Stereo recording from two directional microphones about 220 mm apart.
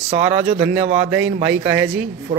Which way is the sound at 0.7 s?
5° right (ahead or behind).